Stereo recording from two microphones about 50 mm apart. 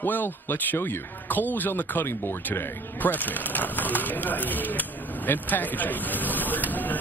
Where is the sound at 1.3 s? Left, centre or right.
Left.